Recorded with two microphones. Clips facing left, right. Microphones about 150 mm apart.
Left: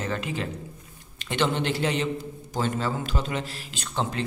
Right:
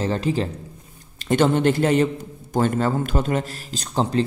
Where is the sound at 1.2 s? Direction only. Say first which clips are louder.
Right 8 dB; 45° right (ahead or behind).